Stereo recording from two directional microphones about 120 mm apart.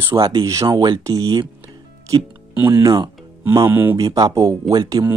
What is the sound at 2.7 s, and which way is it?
Speech, 30° right (ahead or behind).